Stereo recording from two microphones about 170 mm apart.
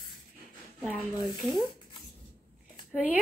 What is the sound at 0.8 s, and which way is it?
Speech, 5° right (ahead or behind).